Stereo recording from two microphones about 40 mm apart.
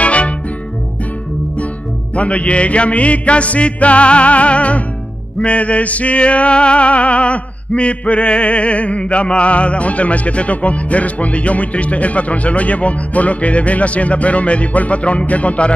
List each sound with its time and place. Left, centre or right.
0.0 s music: left
2.1 s music: left